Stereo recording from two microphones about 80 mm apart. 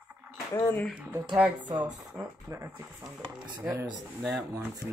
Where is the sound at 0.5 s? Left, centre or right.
Left.